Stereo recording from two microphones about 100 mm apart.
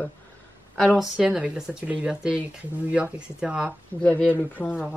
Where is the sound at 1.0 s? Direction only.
10° right (ahead or behind).